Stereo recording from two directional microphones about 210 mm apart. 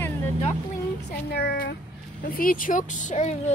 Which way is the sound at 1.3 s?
50° left (ahead or behind).